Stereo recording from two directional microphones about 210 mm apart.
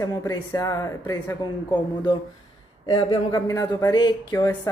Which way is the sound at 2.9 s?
20° left (ahead or behind).